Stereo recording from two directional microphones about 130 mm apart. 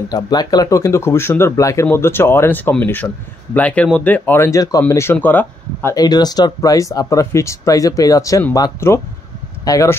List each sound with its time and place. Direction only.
0.1 s speech: 30° left (ahead or behind); by 5.9 s 15° left (ahead or behind)
5.9 s speech: 30° left (ahead or behind)